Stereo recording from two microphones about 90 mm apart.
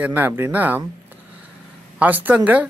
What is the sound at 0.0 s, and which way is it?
Speech, 20° right (ahead or behind).